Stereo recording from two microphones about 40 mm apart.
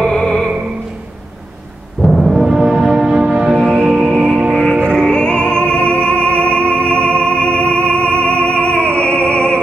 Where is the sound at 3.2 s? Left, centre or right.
Right.